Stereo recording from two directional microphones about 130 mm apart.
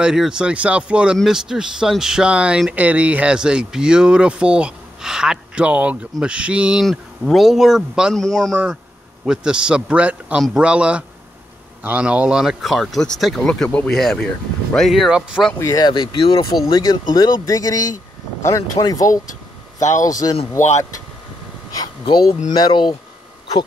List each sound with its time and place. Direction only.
0.0 s speech: 5° right (ahead or behind)
15.6 s speech: 30° left (ahead or behind)
15.9 s speech: 40° left (ahead or behind)
17.1 s speech: 25° left (ahead or behind)
22.6 s speech: 35° left (ahead or behind)